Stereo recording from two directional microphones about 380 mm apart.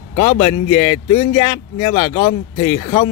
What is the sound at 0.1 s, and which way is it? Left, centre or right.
A man's voice, centre.